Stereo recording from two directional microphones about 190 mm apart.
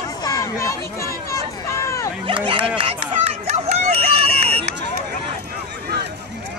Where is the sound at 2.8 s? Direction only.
30° right (ahead or behind).